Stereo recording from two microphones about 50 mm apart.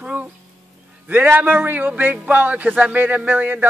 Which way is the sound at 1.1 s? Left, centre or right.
Right.